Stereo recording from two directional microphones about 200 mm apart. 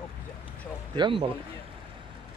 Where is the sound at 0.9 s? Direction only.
25° right (ahead or behind).